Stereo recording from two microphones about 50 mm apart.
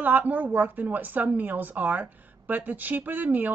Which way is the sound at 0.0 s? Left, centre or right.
Right.